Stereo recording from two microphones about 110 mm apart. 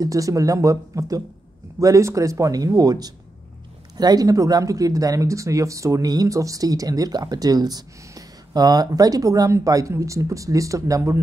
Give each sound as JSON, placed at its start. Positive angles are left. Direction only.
{"t": 0.0, "sound": "speech", "side_deg": -30}